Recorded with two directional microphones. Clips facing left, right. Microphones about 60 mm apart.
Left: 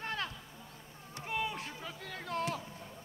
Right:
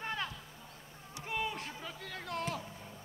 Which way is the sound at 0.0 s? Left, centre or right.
Centre.